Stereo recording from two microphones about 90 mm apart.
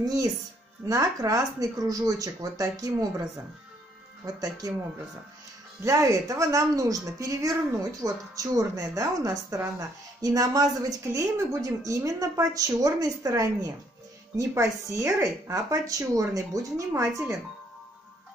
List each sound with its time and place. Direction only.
0.0 s a woman's voice: 40° right (ahead or behind)
4.4 s a woman's voice: 40° right (ahead or behind)
5.8 s a woman's voice: 35° right (ahead or behind)